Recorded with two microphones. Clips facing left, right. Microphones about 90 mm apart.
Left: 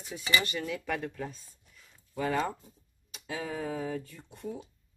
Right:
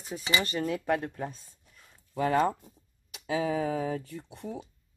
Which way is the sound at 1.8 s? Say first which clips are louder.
Right 4 dB; 50° right (ahead or behind).